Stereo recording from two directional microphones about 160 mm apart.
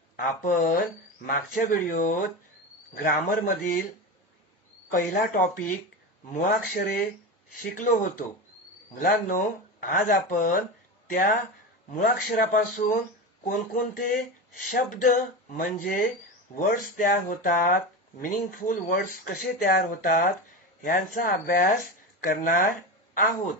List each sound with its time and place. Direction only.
0.1 s speech: 55° left (ahead or behind)
4.9 s speech: 60° left (ahead or behind)